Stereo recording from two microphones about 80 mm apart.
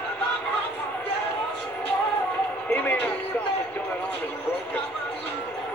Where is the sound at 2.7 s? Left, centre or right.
Centre.